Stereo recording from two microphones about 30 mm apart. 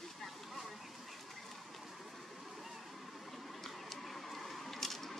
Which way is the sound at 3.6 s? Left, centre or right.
Centre.